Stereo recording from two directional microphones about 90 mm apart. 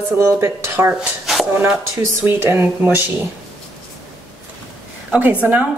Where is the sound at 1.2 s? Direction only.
5° right (ahead or behind).